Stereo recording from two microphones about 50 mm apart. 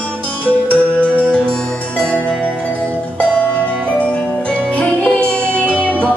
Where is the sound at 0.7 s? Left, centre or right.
Left.